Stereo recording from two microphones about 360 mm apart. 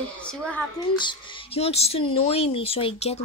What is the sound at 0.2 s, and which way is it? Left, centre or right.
A woman's voice, centre.